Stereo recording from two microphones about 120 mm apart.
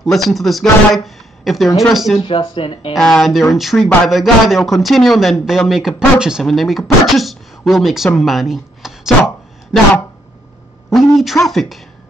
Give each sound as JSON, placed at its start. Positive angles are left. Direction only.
{"t": 0.0, "sound": "speech", "side_deg": 0}
{"t": 2.1, "sound": "speech", "side_deg": 50}
{"t": 2.9, "sound": "a woman's voice", "side_deg": 5}
{"t": 10.9, "sound": "speech", "side_deg": 0}